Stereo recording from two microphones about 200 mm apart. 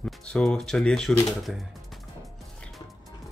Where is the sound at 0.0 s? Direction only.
5° left (ahead or behind).